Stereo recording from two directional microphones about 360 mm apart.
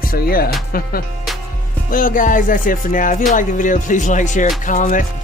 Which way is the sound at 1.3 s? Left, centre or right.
Centre.